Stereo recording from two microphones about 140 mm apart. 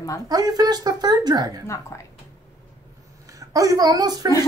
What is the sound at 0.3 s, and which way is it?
A woman's voice, 25° right (ahead or behind).